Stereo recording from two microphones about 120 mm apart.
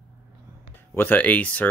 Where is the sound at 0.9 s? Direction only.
15° left (ahead or behind).